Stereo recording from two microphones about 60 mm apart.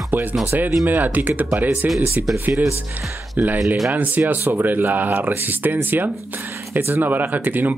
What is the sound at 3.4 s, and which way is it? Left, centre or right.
Speech, right.